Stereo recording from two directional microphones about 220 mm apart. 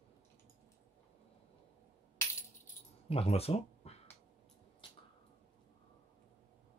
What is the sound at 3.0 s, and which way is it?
Speech, 25° left (ahead or behind).